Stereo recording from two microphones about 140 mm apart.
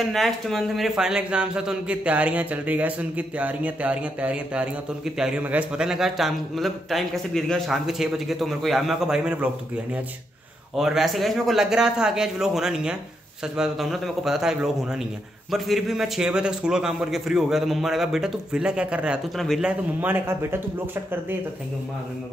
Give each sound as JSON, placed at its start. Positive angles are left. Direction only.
{"t": 0.0, "sound": "a man's voice", "side_deg": 0}
{"t": 10.8, "sound": "a man's voice", "side_deg": 0}
{"t": 20.0, "sound": "a man's voice", "side_deg": -15}